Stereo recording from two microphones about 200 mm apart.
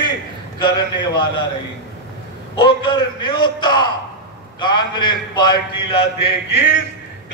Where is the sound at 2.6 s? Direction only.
25° left (ahead or behind).